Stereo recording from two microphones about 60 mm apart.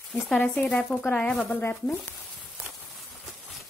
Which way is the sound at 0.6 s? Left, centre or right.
Centre.